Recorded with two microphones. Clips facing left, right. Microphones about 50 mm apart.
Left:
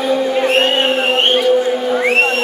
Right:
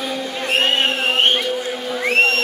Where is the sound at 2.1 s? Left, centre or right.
Centre.